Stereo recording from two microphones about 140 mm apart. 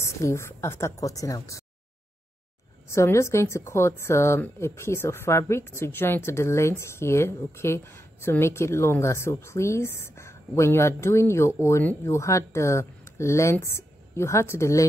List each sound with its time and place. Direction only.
0.0 s a woman's voice: 20° left (ahead or behind)
2.9 s a woman's voice: 20° left (ahead or behind)